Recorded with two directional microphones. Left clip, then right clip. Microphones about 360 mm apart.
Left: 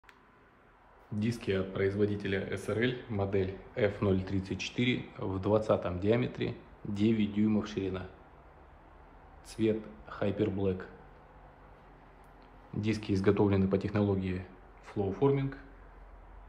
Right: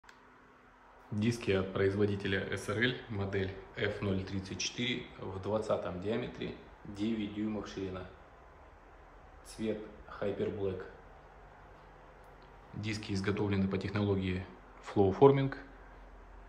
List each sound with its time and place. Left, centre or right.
1.1 s speech: centre; by 8.0 s left
9.6 s speech: left
12.8 s speech: centre
14.9 s speech: centre